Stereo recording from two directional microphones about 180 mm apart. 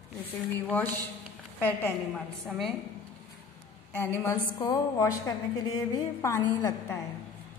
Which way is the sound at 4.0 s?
10° left (ahead or behind).